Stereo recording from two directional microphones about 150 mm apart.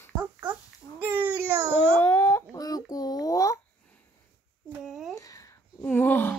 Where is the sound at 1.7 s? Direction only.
10° left (ahead or behind).